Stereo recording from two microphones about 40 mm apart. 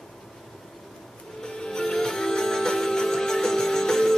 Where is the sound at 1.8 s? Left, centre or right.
Centre.